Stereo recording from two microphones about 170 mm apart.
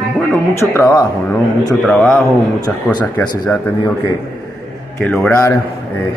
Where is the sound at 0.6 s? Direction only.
15° left (ahead or behind).